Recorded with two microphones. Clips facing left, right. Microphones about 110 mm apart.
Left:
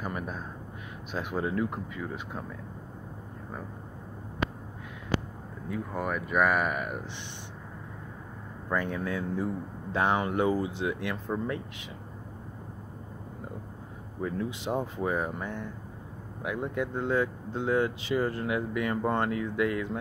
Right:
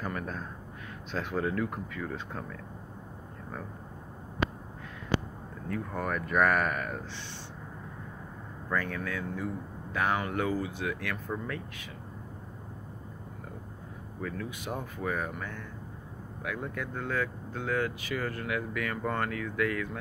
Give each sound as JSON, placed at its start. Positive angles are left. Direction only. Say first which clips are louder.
{"t": 0.0, "sound": "a man's voice", "louder": "left 1 dB", "side_deg": 15}
{"t": 5.7, "sound": "speech", "louder": "left 1 dB", "side_deg": 5}
{"t": 8.6, "sound": "speech", "louder": "left 2 dB", "side_deg": 20}
{"t": 14.2, "sound": "speech", "louder": "left 5 dB", "side_deg": 25}